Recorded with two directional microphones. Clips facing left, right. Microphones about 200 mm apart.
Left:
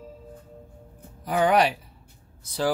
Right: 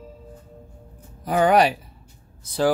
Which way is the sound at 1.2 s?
45° right (ahead or behind).